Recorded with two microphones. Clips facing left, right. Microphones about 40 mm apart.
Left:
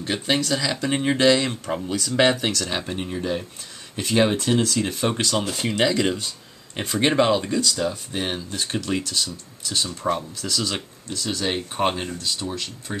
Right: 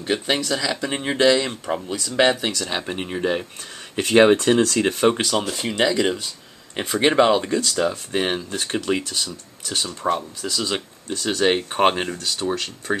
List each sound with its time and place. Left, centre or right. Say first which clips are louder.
0.0 s speech: right 1 dB; centre
2.9 s speech: right 1 dB; right
3.2 s speech: right 4 dB; right
5.1 s speech: right 1 dB; centre
5.5 s speech: right 1 dB; centre; by 7.6 s right
7.6 s speech: right 2 dB; right
8.7 s speech: right 2 dB; right
9.8 s speech: right 4 dB; centre
11.2 s speech: right 6 dB; right